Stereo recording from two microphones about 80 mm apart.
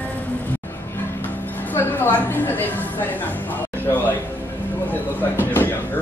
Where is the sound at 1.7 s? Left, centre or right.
Left.